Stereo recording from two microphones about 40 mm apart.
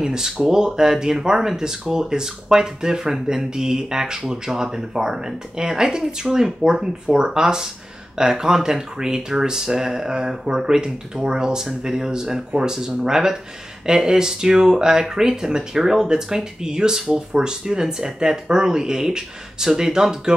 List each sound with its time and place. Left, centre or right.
0.0 s speech: centre